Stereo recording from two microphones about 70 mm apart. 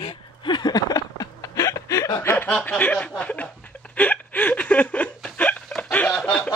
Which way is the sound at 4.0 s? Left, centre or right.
Left.